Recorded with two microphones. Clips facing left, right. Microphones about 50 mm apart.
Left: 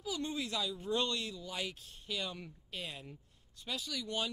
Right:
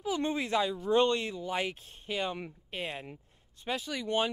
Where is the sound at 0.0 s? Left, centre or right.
Right.